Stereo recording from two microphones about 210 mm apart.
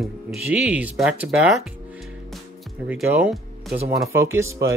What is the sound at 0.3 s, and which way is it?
Speech, 5° right (ahead or behind).